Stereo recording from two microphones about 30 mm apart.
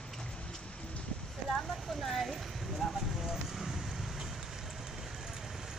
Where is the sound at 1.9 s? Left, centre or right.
Centre.